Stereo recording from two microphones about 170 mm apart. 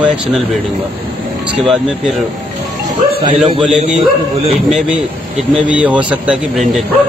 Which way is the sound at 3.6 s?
5° right (ahead or behind).